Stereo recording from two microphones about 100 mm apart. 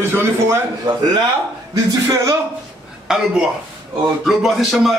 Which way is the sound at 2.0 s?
35° right (ahead or behind).